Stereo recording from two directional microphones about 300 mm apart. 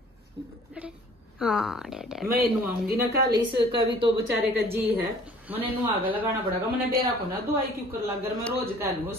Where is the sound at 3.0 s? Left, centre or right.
Right.